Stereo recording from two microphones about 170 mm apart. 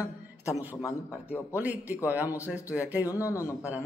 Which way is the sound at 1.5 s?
10° right (ahead or behind).